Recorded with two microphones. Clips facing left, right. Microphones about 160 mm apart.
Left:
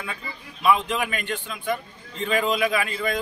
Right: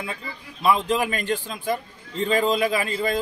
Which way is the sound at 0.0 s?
35° right (ahead or behind).